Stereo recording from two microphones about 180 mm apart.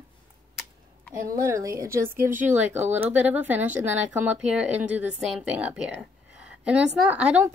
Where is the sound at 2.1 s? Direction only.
50° right (ahead or behind).